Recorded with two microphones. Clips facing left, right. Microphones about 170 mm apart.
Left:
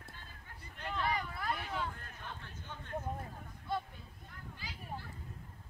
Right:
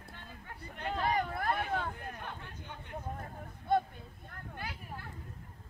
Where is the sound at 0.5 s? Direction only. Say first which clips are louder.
Right 5 dB; 55° right (ahead or behind).